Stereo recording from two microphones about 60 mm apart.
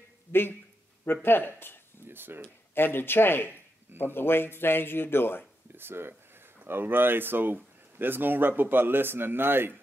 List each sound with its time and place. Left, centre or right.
0.3 s a man's voice: left
2.0 s speech: right
2.7 s a man's voice: left
5.8 s speech: right